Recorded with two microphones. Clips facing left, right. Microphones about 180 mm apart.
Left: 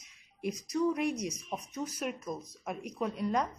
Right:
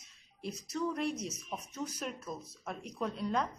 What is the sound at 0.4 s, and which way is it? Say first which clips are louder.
A woman's voice: left 5 dB; 15° left (ahead or behind).